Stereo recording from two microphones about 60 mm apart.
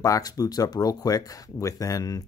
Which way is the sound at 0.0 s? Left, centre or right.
Left.